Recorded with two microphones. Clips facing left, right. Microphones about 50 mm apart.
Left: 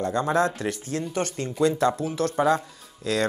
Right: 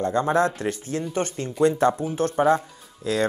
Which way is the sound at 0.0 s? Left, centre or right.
Right.